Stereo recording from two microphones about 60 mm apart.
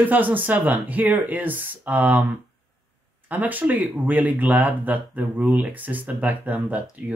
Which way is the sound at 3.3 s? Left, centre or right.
Right.